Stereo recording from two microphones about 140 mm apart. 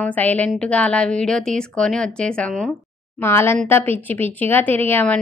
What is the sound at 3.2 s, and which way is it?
A woman's voice, 15° left (ahead or behind).